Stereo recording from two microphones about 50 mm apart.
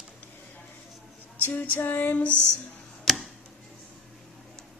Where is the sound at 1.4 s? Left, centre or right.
Left.